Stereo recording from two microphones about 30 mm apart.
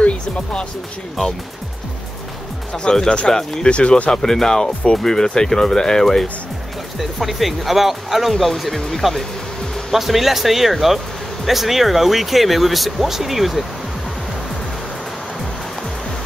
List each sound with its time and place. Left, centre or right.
0.0 s music: left
2.7 s speech: left
3.6 s speech: left
4.1 s speech: centre
7.0 s speech: centre
9.9 s speech: centre